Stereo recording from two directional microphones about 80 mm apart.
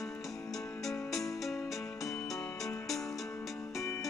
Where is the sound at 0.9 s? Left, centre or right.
Centre.